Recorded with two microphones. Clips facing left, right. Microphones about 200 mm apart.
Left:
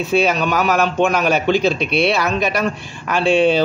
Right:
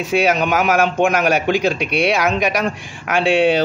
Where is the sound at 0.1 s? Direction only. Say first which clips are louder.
Right 1 dB; 15° right (ahead or behind).